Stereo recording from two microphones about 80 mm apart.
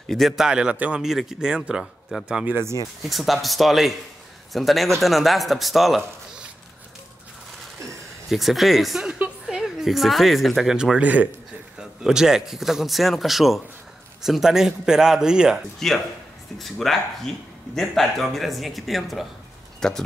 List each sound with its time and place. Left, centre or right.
0.1 s speech: centre
0.5 s speech: centre
2.4 s speech: right
3.0 s speech: centre
7.8 s a woman's voice: centre
11.0 s speech: centre
15.8 s speech: centre